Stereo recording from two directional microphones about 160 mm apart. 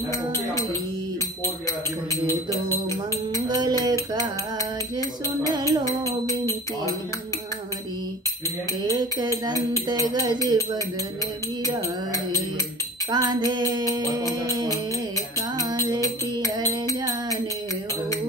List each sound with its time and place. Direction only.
2.2 s music: 20° left (ahead or behind)
3.3 s music: 25° right (ahead or behind)
5.4 s music: 25° right (ahead or behind)
5.7 s music: 20° left (ahead or behind)
8.8 s tambourine: 25° right (ahead or behind)
9.8 s music: 25° right (ahead or behind)
13.1 s music: 25° right (ahead or behind)
16.0 s music: 20° left (ahead or behind)